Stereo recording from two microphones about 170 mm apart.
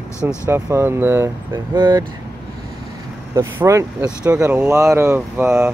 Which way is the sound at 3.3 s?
15° right (ahead or behind).